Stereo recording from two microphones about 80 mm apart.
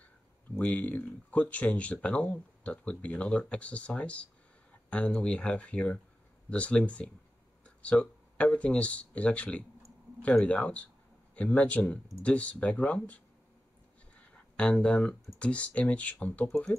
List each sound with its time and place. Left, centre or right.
0.6 s speech: centre
14.1 s a sound: centre
15.3 s speech: centre